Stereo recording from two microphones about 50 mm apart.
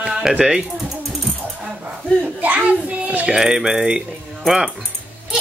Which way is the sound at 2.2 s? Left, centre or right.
Right.